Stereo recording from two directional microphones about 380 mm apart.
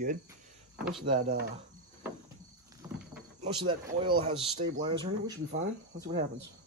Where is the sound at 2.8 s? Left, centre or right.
Centre.